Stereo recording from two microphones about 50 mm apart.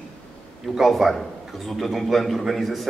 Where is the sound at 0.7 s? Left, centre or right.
Centre.